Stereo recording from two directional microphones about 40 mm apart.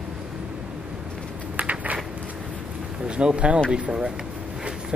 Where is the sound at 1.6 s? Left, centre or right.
Right.